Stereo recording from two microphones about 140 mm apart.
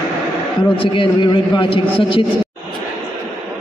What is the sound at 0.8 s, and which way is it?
A man's voice, 40° left (ahead or behind).